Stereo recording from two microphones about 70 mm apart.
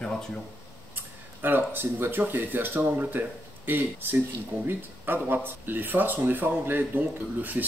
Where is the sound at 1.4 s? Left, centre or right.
Right.